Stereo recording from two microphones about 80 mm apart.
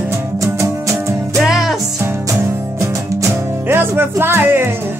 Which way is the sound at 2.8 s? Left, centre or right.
Right.